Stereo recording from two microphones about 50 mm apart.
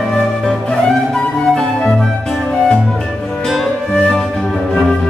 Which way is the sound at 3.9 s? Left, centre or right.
Centre.